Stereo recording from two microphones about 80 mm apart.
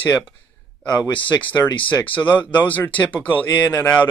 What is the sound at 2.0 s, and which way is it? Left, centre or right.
Speech, centre.